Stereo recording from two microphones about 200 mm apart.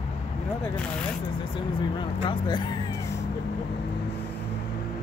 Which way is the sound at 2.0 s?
20° left (ahead or behind).